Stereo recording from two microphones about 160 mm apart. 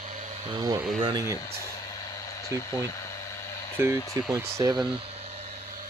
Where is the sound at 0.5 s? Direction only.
25° right (ahead or behind).